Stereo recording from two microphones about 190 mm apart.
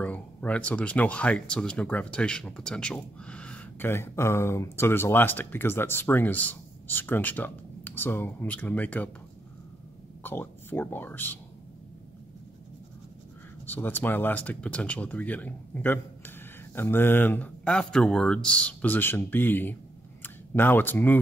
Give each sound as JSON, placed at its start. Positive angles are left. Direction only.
{"t": 0.0, "sound": "speech", "side_deg": 5}
{"t": 10.2, "sound": "speech", "side_deg": 10}
{"t": 13.7, "sound": "speech", "side_deg": 10}